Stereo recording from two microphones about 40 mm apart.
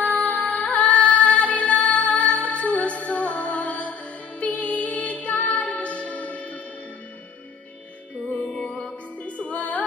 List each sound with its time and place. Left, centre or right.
0.2 s music: left
8.5 s music: left